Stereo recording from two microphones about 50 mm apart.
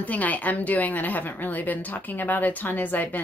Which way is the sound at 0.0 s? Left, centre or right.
Left.